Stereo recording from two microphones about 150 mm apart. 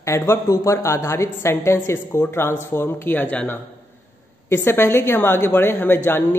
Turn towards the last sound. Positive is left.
turn(degrees=15)  # may be behind; listen again after turning